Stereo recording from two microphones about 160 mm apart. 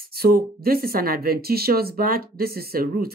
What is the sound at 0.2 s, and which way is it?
Speech, 70° right (ahead or behind).